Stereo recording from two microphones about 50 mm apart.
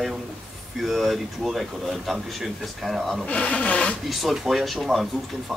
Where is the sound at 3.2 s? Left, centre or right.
Left.